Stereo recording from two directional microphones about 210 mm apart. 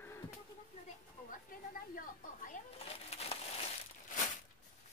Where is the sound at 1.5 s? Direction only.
40° left (ahead or behind).